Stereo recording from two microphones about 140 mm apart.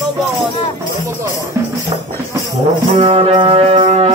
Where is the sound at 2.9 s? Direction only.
40° right (ahead or behind).